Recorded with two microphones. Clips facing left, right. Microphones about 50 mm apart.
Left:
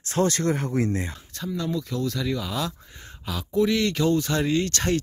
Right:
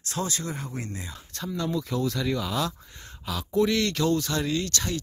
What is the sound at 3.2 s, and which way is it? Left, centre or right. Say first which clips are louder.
Speech: left 1 dB; centre.